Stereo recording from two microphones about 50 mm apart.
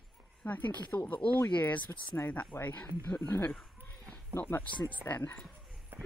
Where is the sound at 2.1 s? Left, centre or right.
Left.